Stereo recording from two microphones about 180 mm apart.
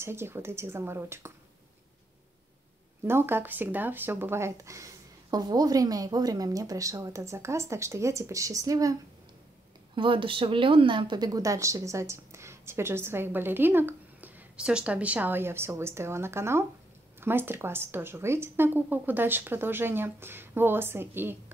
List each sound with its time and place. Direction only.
0.0 s speech: 15° right (ahead or behind)
3.1 s speech: 15° right (ahead or behind)
9.9 s speech: 30° right (ahead or behind); by 21.4 s 10° right (ahead or behind)